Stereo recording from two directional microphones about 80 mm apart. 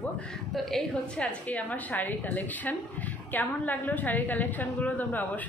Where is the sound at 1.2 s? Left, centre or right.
Centre.